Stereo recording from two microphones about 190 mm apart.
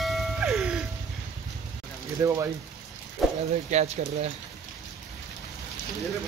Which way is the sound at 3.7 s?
35° right (ahead or behind).